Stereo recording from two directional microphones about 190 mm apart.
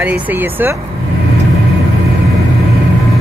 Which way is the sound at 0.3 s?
10° right (ahead or behind).